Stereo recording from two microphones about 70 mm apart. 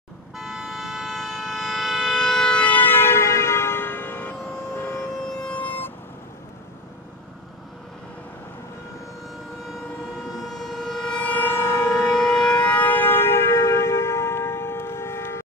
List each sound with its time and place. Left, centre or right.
0.4 s a sound: centre; by 4.4 s left
5.4 s vehicle: centre
10.5 s train: centre
11.4 s train: left
12.0 s siren: centre; by 15.4 s left